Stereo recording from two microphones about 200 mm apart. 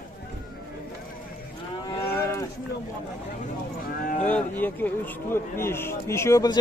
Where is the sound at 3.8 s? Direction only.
45° left (ahead or behind).